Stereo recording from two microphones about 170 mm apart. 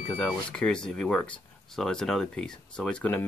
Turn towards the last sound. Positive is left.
turn(degrees=10)  # may be behind; listen again after turning